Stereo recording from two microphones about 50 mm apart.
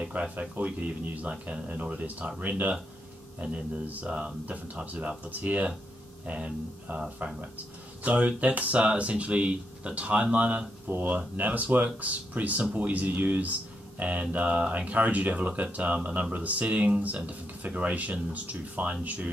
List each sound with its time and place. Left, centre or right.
0.0 s speech: right
10.9 s speech: right
14.4 s speech: centre
14.9 s speech: right